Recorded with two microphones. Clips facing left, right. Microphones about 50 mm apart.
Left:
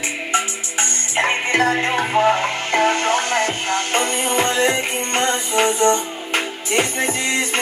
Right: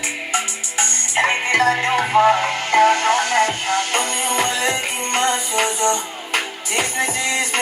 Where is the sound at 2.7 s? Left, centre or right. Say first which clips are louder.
Right 3 dB; left.